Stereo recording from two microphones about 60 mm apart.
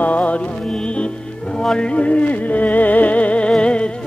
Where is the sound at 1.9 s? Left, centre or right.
Left.